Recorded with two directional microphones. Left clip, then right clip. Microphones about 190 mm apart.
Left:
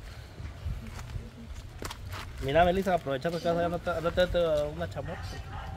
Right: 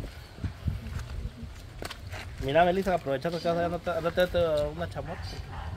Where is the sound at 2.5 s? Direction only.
5° right (ahead or behind).